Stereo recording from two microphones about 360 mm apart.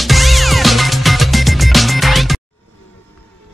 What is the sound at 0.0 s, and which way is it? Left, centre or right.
Music, centre.